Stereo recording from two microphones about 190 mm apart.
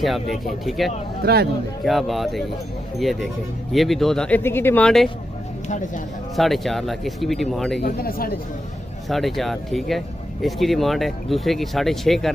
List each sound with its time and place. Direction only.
0.0 s speech: centre (ahead or behind)
1.2 s speech: 55° right (ahead or behind)
1.9 s speech: centre (ahead or behind)
6.3 s speech: centre (ahead or behind)
7.8 s speech: 50° left (ahead or behind)
9.1 s speech: centre (ahead or behind)